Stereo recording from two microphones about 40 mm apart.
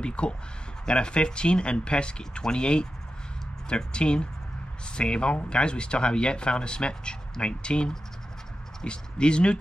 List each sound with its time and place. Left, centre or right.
0.0 s a man's voice: left